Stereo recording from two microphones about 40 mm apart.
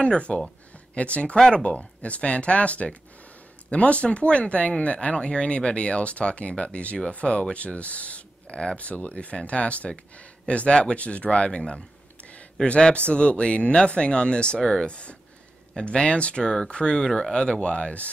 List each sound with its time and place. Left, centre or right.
0.0 s speech: left
17.0 s speech: centre
17.3 s speech: left